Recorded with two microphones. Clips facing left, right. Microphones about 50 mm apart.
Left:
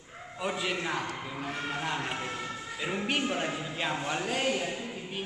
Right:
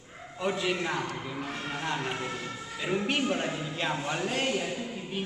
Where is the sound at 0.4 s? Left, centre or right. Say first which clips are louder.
Right 3 dB; centre.